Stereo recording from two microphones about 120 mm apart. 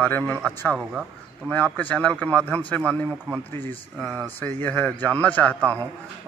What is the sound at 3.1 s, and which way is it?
Speech, 15° right (ahead or behind).